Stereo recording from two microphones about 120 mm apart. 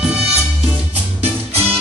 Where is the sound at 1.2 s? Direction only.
55° right (ahead or behind).